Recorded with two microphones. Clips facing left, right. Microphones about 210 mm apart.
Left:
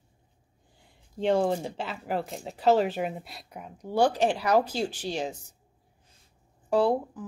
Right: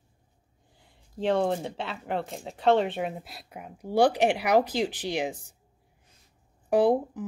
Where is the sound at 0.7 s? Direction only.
Centre (ahead or behind).